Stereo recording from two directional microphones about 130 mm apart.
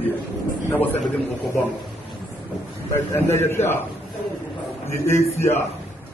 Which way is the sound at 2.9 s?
20° left (ahead or behind).